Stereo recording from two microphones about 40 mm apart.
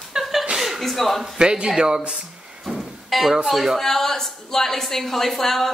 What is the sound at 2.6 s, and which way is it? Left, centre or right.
Music, centre.